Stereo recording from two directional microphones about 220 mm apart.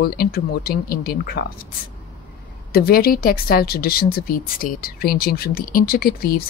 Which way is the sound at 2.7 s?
45° left (ahead or behind).